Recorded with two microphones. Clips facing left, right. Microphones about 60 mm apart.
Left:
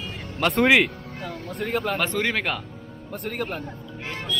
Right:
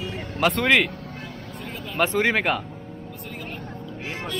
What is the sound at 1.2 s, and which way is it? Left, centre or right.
Vehicle, left.